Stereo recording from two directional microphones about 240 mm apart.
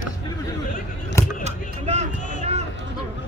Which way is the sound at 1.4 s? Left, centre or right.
Right.